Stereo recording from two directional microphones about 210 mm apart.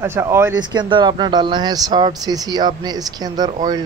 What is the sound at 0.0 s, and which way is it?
Speech, 10° right (ahead or behind).